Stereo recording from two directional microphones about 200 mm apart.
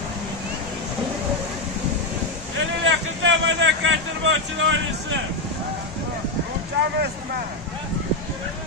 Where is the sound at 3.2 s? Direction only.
70° right (ahead or behind).